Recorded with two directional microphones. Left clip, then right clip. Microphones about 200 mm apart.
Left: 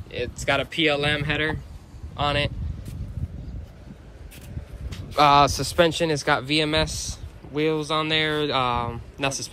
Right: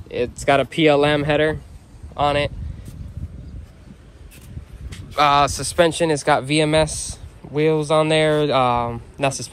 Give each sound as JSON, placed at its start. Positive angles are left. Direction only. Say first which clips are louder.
{"t": 0.5, "sound": "speech", "louder": "right 6 dB", "side_deg": -20}
{"t": 2.1, "sound": "speech", "louder": "right 5 dB", "side_deg": 5}
{"t": 5.1, "sound": "speech", "louder": "right 1 dB", "side_deg": 20}
{"t": 5.8, "sound": "speech", "louder": "right 4 dB", "side_deg": 5}